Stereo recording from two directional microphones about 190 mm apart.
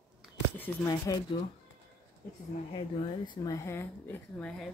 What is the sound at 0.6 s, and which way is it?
Speech, 20° left (ahead or behind).